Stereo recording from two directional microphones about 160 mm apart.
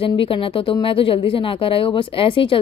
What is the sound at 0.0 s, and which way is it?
A woman's voice, 35° left (ahead or behind).